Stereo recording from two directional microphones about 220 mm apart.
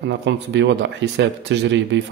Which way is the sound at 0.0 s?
50° right (ahead or behind).